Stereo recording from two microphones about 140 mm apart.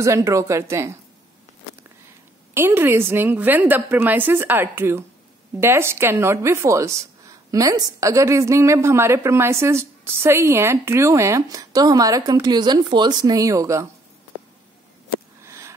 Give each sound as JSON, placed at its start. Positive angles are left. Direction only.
{"t": 0.0, "sound": "a woman's voice", "side_deg": -20}
{"t": 2.5, "sound": "a woman's voice", "side_deg": -15}
{"t": 15.4, "sound": "a sound", "side_deg": -20}